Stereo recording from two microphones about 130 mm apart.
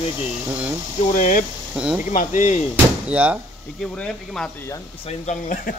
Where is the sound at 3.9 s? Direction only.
5° left (ahead or behind).